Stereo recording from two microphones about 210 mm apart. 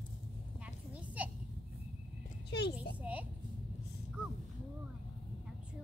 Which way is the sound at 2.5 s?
50° left (ahead or behind).